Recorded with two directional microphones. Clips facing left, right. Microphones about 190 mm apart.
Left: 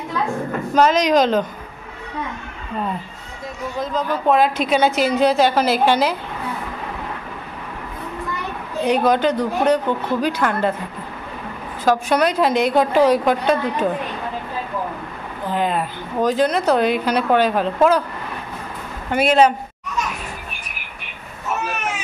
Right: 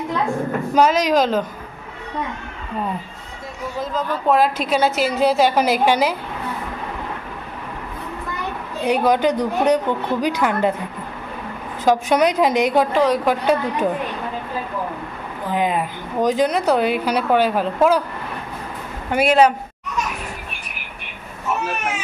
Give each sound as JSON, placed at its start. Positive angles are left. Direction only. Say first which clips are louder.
{"t": 0.7, "sound": "a woman's voice", "louder": "left 1 dB", "side_deg": -5}
{"t": 3.7, "sound": "a woman's voice", "louder": "left 1 dB", "side_deg": -5}
{"t": 8.8, "sound": "speech", "louder": "even", "side_deg": -10}
{"t": 11.8, "sound": "speech", "louder": "right 1 dB", "side_deg": -15}
{"t": 12.9, "sound": "a woman's voice", "louder": "left 3 dB", "side_deg": 5}
{"t": 13.2, "sound": "speech", "louder": "even", "side_deg": -10}
{"t": 15.5, "sound": "speech", "louder": "right 1 dB", "side_deg": -15}
{"t": 19.1, "sound": "speech", "louder": "even", "side_deg": -10}